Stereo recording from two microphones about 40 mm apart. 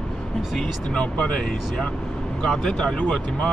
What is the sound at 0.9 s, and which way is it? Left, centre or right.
Speech, left.